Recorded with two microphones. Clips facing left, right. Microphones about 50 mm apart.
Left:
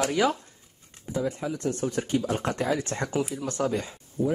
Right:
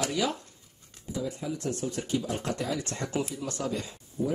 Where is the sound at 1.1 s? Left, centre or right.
Left.